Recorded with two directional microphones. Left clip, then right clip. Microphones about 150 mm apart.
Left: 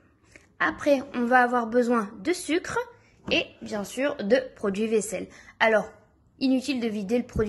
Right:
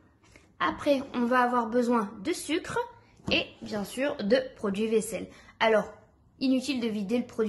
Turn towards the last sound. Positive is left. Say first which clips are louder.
# left 3 dB
turn(degrees=20)  # may be behind; listen again after turning